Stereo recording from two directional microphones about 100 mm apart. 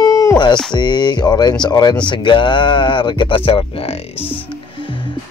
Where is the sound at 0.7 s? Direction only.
45° left (ahead or behind); by 4.3 s 70° left (ahead or behind).